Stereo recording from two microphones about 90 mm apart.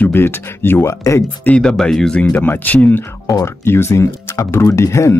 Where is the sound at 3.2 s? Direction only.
35° left (ahead or behind).